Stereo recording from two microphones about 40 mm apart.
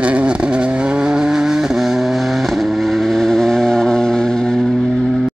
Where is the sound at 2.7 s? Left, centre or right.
Centre.